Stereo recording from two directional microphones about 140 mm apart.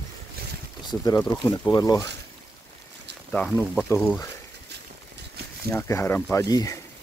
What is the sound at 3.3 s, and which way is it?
Speech, 5° left (ahead or behind).